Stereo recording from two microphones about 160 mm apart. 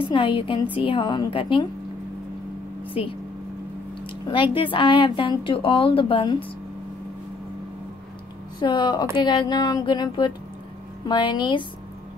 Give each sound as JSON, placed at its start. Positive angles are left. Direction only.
{"t": 0.0, "sound": "a woman's voice", "side_deg": 30}
{"t": 2.9, "sound": "a woman's voice", "side_deg": 35}
{"t": 4.3, "sound": "a woman's voice", "side_deg": 30}
{"t": 8.5, "sound": "a woman's voice", "side_deg": 30}